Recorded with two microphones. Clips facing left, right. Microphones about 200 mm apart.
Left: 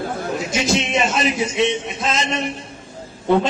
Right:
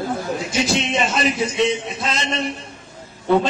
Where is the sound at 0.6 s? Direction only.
Centre (ahead or behind).